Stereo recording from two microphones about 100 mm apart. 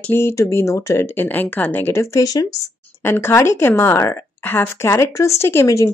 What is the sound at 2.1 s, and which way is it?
Speech, 40° left (ahead or behind).